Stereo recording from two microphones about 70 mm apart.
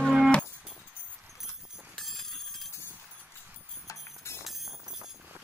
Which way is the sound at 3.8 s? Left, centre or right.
Left.